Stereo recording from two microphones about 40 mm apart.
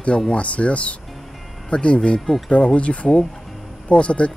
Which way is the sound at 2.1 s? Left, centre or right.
Centre.